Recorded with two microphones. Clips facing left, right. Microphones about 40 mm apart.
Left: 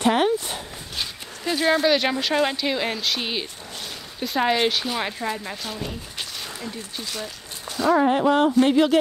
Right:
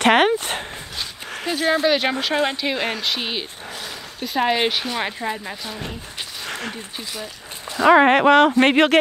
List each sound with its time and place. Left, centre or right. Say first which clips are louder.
0.0 s dog: right 4 dB; right
1.5 s speech: right 1 dB; centre
6.4 s a sound: right 5 dB; right
7.8 s speech: right 6 dB; right